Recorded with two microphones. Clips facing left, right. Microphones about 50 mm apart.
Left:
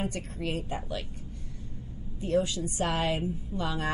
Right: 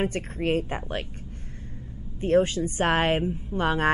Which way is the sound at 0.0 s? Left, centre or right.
Right.